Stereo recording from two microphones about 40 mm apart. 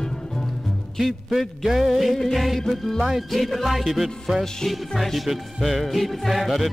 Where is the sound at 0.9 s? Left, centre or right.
Centre.